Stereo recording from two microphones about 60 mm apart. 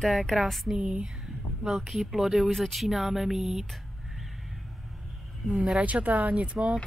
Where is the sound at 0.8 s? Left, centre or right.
Centre.